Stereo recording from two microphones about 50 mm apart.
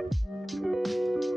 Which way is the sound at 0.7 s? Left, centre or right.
Centre.